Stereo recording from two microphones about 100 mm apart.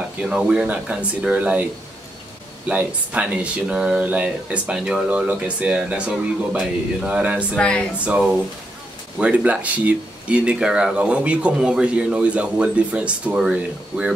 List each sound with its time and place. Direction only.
0.3 s speech: 10° right (ahead or behind)
2.7 s speech: 15° right (ahead or behind)
7.5 s speech: 10° left (ahead or behind)
8.0 s speech: 10° right (ahead or behind)